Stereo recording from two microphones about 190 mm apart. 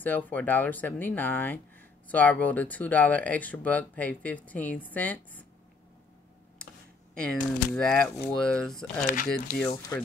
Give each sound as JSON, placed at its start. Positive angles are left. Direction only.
{"t": 0.0, "sound": "speech", "side_deg": 10}
{"t": 7.2, "sound": "speech", "side_deg": 5}
{"t": 9.0, "sound": "speech", "side_deg": 45}